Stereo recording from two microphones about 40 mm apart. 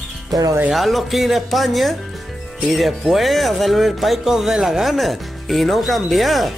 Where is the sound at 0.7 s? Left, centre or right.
Centre.